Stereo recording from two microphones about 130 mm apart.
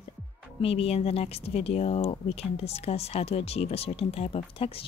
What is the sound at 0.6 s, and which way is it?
Speech, 50° left (ahead or behind).